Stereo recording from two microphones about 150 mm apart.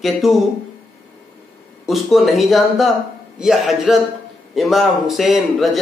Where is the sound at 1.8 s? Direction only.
Centre (ahead or behind).